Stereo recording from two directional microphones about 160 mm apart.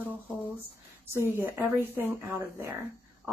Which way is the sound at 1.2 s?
15° right (ahead or behind).